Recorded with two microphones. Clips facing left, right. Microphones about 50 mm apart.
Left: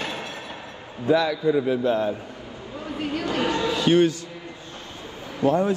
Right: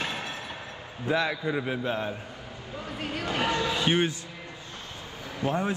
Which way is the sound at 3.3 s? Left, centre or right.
Right.